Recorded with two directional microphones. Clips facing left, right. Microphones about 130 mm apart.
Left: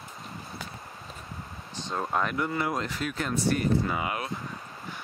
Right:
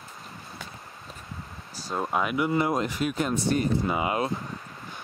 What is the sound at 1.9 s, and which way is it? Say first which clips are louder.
Speech: right 2 dB; 5° right (ahead or behind).